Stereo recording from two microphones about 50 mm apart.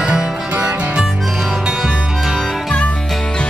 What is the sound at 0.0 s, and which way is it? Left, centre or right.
Music, centre.